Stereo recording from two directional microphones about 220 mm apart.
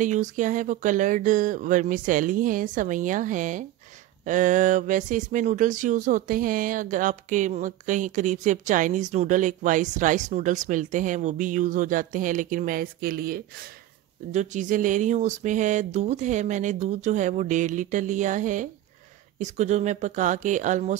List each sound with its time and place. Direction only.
0.0 s speech: 35° right (ahead or behind)